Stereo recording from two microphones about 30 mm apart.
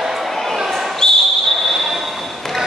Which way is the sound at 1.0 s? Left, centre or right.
Left.